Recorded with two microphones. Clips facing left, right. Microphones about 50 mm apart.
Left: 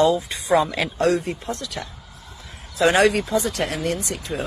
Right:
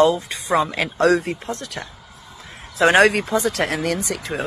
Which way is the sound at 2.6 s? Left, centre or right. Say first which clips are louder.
Right 3 dB; right.